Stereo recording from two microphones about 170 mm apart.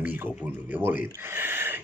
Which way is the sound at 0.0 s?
10° right (ahead or behind).